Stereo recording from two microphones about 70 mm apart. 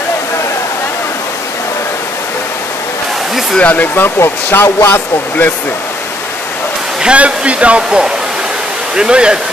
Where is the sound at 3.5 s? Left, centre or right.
Left.